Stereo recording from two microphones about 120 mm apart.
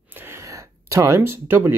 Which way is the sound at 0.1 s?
20° right (ahead or behind).